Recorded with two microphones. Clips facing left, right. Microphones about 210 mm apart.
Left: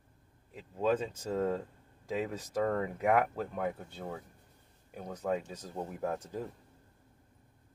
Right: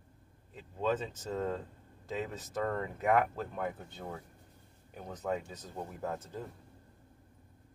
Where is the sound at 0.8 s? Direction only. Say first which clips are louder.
Left 3 dB; 10° left (ahead or behind).